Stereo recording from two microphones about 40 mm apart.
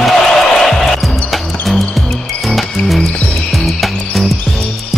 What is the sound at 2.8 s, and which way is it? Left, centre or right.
Music, left.